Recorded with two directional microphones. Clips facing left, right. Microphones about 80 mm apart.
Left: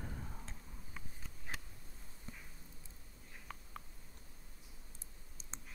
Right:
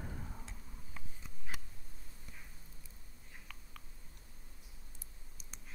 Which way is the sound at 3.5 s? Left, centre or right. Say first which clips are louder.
Left 7 dB; left.